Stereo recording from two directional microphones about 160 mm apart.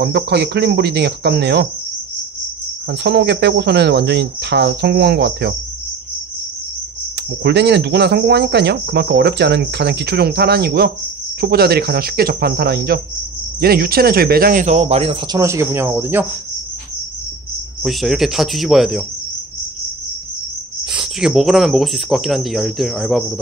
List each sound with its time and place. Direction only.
0.0 s speech: 90° right
2.9 s speech: 90° right
7.4 s speech: 90° right; by 15.1 s 40° right (ahead or behind)
15.3 s speech: 20° right (ahead or behind)
17.8 s speech: centre (ahead or behind)
20.9 s speech: 5° right (ahead or behind)